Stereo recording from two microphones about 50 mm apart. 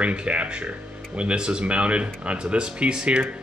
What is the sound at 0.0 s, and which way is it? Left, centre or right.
Speech, right.